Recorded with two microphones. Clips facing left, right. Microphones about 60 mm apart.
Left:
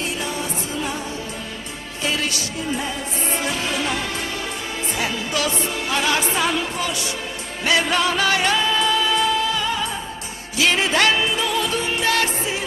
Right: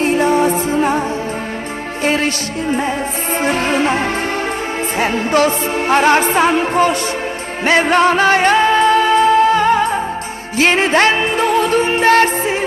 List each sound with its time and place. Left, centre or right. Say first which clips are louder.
0.0 s music: right 13 dB; right
2.0 s music: right 7 dB; right